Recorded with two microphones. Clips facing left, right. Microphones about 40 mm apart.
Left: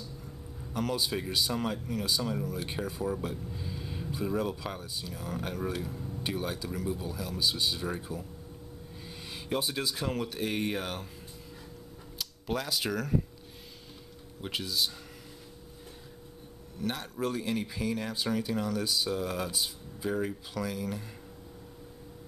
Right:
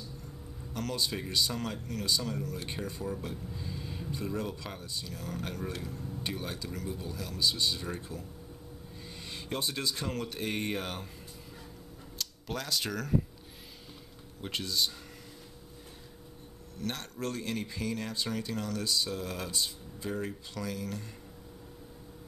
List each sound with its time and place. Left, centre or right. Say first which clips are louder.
0.7 s speech: left 3 dB; centre
12.2 s speech: left 4 dB; centre
14.4 s speech: even; centre
16.7 s speech: left 3 dB; centre